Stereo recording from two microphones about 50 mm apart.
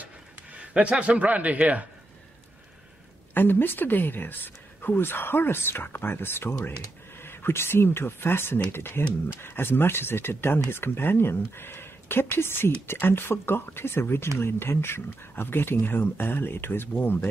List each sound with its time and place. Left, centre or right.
0.0 s speech: right
3.3 s speech: left